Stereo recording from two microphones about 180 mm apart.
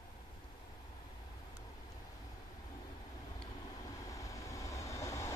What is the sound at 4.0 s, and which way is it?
Train, 20° left (ahead or behind).